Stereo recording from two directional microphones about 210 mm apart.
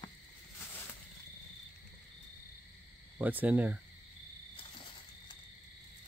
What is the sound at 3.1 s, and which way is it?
Speech, 10° right (ahead or behind).